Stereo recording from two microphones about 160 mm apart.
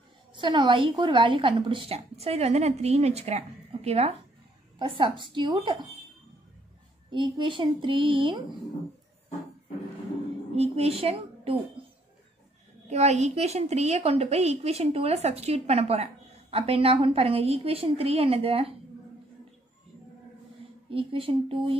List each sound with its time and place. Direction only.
0.3 s a woman's voice: 30° right (ahead or behind)
7.1 s a woman's voice: 30° right (ahead or behind)
10.5 s a woman's voice: 40° right (ahead or behind)
12.8 s a woman's voice: 45° right (ahead or behind)
20.9 s a woman's voice: 35° right (ahead or behind)